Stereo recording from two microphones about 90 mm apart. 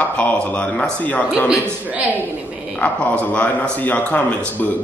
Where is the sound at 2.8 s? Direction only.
15° left (ahead or behind).